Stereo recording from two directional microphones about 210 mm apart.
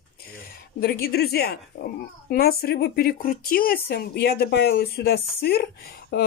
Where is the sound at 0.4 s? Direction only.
45° left (ahead or behind).